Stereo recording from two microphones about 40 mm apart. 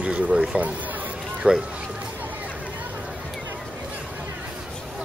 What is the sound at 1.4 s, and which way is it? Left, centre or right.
Speech, right.